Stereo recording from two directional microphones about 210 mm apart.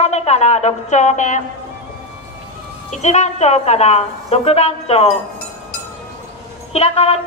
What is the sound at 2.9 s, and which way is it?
A woman's voice, 35° left (ahead or behind).